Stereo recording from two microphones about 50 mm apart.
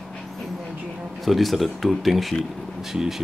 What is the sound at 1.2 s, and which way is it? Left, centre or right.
Speech, centre.